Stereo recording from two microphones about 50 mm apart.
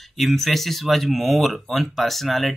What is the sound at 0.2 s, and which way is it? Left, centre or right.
Speech, centre.